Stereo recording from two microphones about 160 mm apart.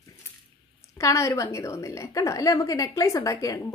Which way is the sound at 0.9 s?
20° left (ahead or behind).